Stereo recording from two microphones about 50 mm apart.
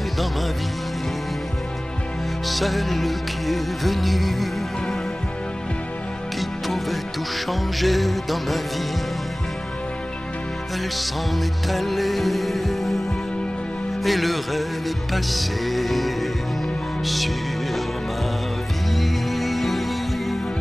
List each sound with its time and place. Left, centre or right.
2.4 s music: centre
7.4 s music: centre
11.0 s music: centre
14.0 s music: centre
18.9 s music: centre